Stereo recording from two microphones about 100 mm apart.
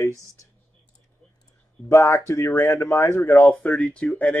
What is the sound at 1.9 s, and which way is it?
Speech, 30° left (ahead or behind).